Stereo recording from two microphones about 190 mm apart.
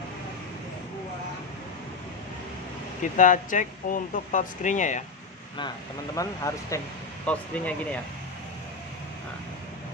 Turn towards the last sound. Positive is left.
turn(degrees=5)  # may be behind; listen again after turning